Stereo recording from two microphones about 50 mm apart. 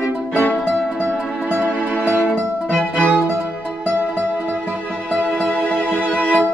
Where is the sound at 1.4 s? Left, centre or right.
Right.